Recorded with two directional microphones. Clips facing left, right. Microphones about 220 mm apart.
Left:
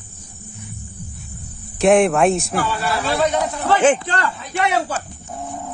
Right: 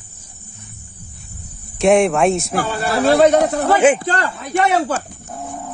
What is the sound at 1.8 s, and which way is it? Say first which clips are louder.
Speech: even; centre (ahead or behind).